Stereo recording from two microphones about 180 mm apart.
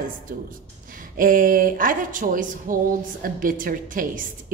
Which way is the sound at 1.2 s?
50° right (ahead or behind).